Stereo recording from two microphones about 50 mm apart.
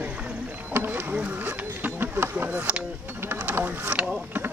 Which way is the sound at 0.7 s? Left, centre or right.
Right.